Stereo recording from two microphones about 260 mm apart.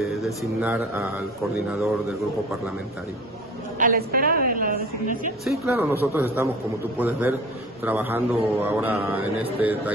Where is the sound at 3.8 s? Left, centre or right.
Right.